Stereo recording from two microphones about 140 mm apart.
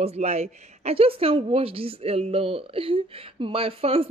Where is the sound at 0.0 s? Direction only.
50° right (ahead or behind).